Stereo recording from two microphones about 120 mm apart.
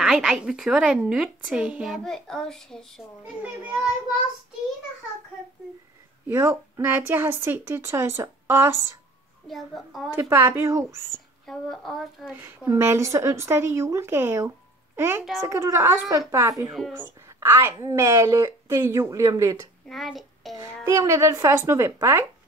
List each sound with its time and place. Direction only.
0.0 s a woman's voice: 5° right (ahead or behind)
3.6 s a child's voice: 10° right (ahead or behind)
6.2 s a woman's voice: 20° right (ahead or behind)
9.5 s a woman's voice: centre (ahead or behind)
10.1 s a woman's voice: 20° right (ahead or behind)
11.4 s a woman's voice: 5° left (ahead or behind)
12.3 s a woman's voice: 15° right (ahead or behind)
19.9 s child singing: centre (ahead or behind)
20.5 s a woman's voice: 25° right (ahead or behind)